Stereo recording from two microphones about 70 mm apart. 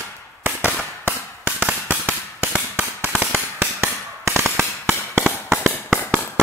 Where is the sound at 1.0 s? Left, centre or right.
Right.